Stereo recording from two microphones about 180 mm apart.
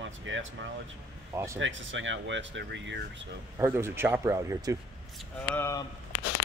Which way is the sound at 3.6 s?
15° right (ahead or behind).